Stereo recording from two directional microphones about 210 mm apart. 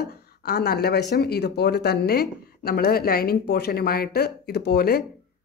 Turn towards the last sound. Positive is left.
turn(degrees=45)  # may be behind; listen again after turning